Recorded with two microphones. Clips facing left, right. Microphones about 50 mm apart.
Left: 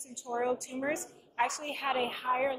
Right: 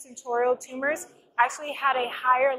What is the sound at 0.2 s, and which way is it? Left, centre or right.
A woman's voice, right.